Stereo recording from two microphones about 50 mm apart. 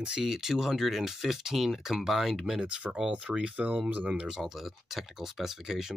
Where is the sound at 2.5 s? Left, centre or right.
Centre.